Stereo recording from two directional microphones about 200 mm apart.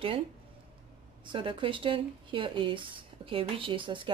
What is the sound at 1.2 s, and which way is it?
A woman's voice, 25° right (ahead or behind).